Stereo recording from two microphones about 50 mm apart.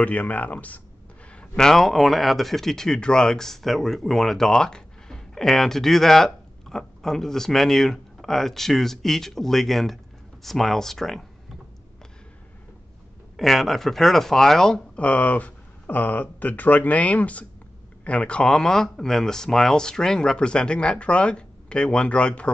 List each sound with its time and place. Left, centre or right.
0.0 s speech: left
1.6 s speech: centre
13.4 s speech: centre
15.0 s speech: left